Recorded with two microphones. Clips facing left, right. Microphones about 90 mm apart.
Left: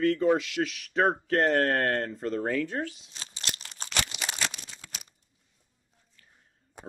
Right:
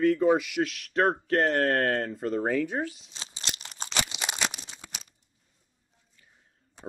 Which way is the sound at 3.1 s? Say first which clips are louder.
Even; 20° right (ahead or behind).